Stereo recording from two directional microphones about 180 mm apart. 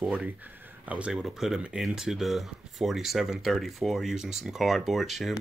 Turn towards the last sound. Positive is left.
turn(degrees=0)  # may be behind; listen again after turning